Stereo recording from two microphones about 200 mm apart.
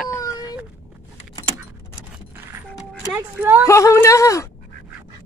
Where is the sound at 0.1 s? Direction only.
20° left (ahead or behind).